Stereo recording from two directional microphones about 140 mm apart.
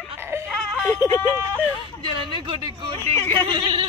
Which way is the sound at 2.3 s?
35° right (ahead or behind).